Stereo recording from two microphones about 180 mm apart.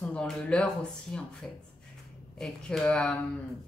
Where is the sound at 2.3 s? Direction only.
Centre (ahead or behind).